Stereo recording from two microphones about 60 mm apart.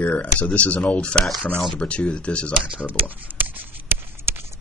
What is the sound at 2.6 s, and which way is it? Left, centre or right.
Speech, right.